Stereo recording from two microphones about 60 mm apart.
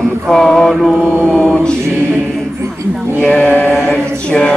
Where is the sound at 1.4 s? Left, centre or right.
Centre.